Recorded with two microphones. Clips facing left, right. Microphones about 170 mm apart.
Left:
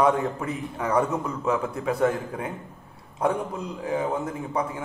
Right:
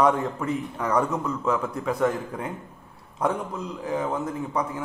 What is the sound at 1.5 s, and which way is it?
Speech, 30° left (ahead or behind).